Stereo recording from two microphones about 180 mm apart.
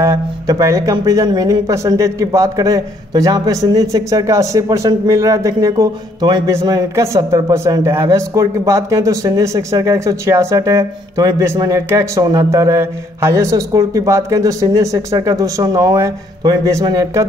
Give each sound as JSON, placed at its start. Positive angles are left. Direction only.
{"t": 0.0, "sound": "speech", "side_deg": -15}